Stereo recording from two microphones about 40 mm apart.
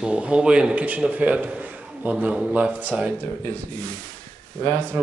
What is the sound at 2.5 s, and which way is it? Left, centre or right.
Speech, right.